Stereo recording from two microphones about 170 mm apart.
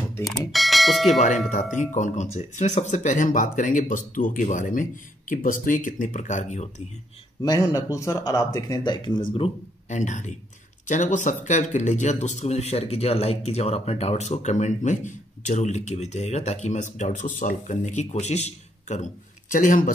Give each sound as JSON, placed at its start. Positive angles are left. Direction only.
{"t": 0.5, "sound": "speech", "side_deg": 0}
{"t": 1.5, "sound": "speech", "side_deg": 45}
{"t": 7.4, "sound": "speech", "side_deg": 20}
{"t": 9.8, "sound": "speech", "side_deg": 45}